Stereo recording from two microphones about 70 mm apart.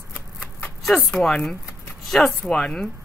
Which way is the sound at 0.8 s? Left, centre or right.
Centre.